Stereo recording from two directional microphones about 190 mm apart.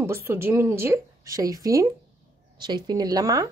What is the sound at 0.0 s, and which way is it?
A woman's voice, 15° right (ahead or behind).